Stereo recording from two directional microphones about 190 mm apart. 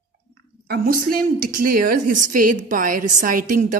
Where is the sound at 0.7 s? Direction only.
50° right (ahead or behind).